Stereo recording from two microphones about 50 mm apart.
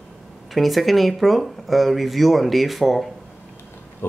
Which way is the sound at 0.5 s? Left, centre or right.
Centre.